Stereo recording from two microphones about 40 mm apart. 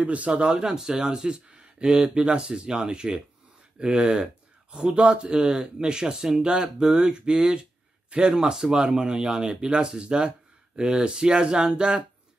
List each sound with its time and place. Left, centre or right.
0.0 s speech: right
0.5 s speech: centre
2.1 s speech: right
5.4 s speech: centre
5.8 s speech: right